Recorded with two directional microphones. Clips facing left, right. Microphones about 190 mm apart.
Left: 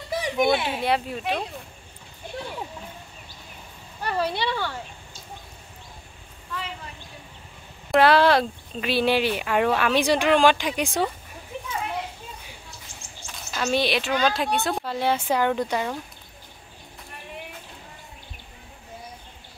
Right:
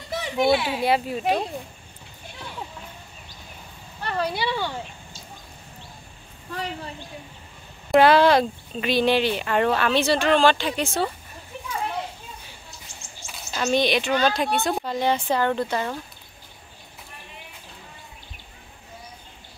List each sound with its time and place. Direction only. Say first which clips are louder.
0.1 s a sound: right 1 dB; 15° left (ahead or behind)
0.8 s a woman's voice: right 3 dB; 5° right (ahead or behind)
4.0 s a sound: left 1 dB; 10° left (ahead or behind)
4.3 s speech: right 1 dB; 5° right (ahead or behind)
6.5 s a woman's voice: right 4 dB; 40° right (ahead or behind)
7.9 s speech: right 2 dB; centre (ahead or behind)
13.3 s a woman's voice: right 2 dB; centre (ahead or behind)